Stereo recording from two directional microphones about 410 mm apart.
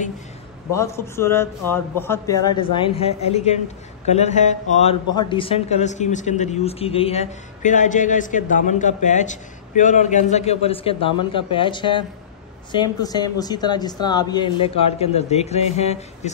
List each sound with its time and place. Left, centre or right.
0.7 s a man's voice: centre